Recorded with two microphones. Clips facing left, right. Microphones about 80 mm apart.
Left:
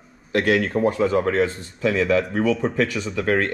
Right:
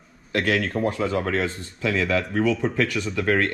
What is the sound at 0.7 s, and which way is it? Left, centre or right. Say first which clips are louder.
Speech: left 4 dB; centre.